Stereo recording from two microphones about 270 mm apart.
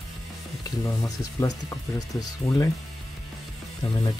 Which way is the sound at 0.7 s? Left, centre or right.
Centre.